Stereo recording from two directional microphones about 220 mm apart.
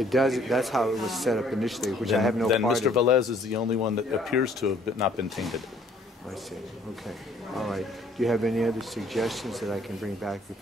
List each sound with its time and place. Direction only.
0.0 s speech: centre (ahead or behind)
7.1 s speech: centre (ahead or behind)